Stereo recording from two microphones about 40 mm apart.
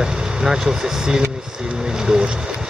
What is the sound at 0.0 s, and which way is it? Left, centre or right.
Speech, centre.